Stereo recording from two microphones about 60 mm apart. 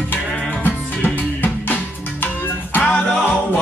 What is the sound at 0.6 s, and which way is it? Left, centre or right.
Music, left.